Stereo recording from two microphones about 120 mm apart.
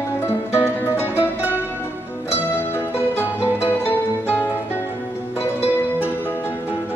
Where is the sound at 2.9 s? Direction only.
20° left (ahead or behind).